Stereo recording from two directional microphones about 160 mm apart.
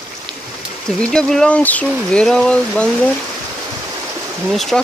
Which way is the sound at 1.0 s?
5° left (ahead or behind).